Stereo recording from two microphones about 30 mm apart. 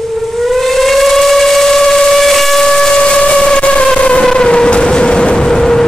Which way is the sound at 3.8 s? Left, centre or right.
Left.